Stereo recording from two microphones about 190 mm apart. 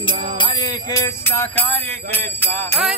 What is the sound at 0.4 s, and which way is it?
Music, 20° left (ahead or behind).